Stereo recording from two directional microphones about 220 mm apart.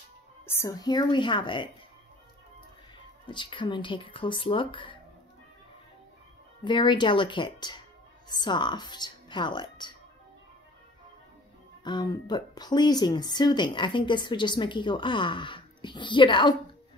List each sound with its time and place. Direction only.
0.5 s speech: 15° left (ahead or behind)
3.3 s speech: 20° left (ahead or behind)
6.6 s speech: 20° left (ahead or behind)
11.8 s speech: 20° left (ahead or behind)